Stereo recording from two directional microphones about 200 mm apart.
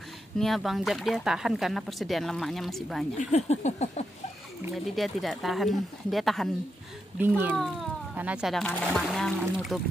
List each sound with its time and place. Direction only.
0.4 s speech: centre (ahead or behind)
3.2 s a sound: 35° left (ahead or behind)
4.7 s speech: centre (ahead or behind)